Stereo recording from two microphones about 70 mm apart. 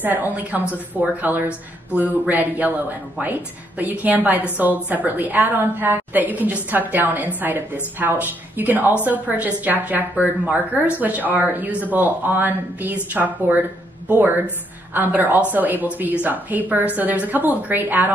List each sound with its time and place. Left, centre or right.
0.0 s a woman's voice: right